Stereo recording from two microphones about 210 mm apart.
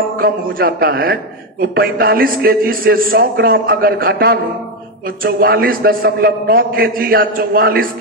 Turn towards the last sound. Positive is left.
turn(degrees=-45)  # may be behind; listen again after turning